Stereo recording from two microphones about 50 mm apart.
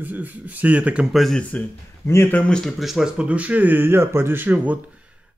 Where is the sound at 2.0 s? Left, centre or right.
Left.